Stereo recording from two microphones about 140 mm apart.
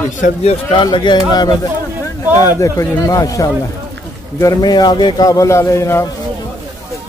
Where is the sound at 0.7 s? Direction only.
35° left (ahead or behind).